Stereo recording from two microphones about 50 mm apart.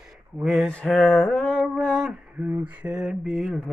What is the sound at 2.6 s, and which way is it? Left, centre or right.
Mantra, right.